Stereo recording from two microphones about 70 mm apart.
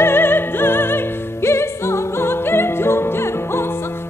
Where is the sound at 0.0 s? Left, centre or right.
Left.